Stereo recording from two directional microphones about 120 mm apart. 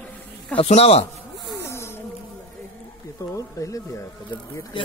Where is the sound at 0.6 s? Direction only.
60° left (ahead or behind).